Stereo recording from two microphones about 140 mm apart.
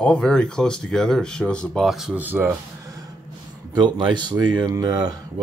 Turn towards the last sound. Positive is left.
turn(degrees=-25)  # may be behind; listen again after turning